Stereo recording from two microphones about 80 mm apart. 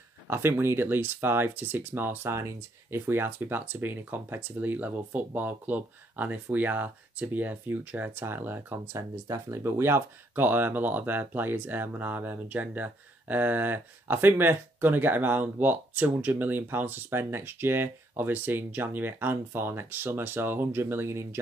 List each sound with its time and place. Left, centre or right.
0.3 s speech: right